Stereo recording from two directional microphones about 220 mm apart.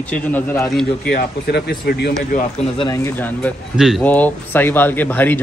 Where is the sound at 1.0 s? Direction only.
45° left (ahead or behind).